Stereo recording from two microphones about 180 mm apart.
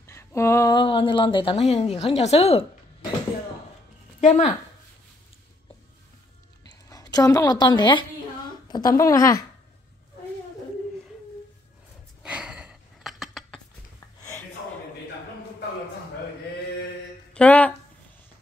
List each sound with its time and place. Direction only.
0.0 s speech: 15° left (ahead or behind); by 3.1 s 35° left (ahead or behind)
4.2 s speech: 40° left (ahead or behind)
6.7 s a woman's voice: 20° left (ahead or behind)
12.2 s a sound: 5° right (ahead or behind)
17.3 s speech: 5° left (ahead or behind)